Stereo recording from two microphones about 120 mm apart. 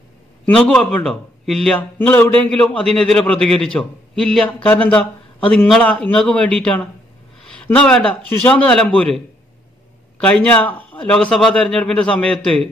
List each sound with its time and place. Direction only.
0.5 s a man's voice: 5° left (ahead or behind)
2.0 s a man's voice: 15° left (ahead or behind)
2.6 s a man's voice: 5° left (ahead or behind)
10.2 s a man's voice: 10° left (ahead or behind)